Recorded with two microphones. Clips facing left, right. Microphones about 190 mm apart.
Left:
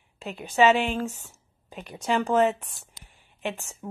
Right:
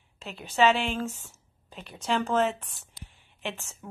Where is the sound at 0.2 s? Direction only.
10° left (ahead or behind).